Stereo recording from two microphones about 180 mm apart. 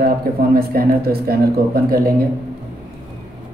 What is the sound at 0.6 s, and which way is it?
Speech, 55° right (ahead or behind).